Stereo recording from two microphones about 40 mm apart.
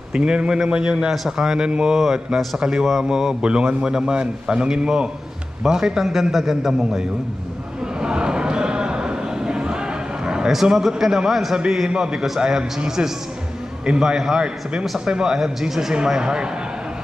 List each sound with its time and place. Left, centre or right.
0.1 s a man's voice: right
3.4 s a man's voice: right
8.0 s a sound: right
10.2 s a man's voice: centre